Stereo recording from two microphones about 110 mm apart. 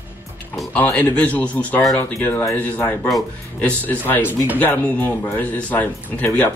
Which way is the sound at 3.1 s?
Centre (ahead or behind).